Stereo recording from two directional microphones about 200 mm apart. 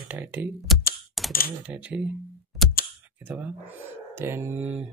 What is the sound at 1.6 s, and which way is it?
Speech, 5° right (ahead or behind).